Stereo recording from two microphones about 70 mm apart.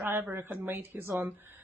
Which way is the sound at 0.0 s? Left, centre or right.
Right.